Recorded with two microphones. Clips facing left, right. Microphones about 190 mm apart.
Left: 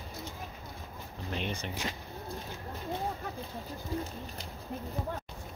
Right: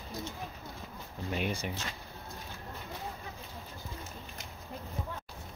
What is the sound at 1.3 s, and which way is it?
Speech, 10° right (ahead or behind).